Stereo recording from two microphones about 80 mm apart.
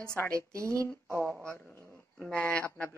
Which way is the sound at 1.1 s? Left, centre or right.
Left.